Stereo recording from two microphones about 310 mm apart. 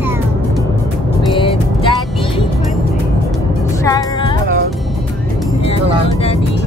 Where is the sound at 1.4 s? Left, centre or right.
Centre.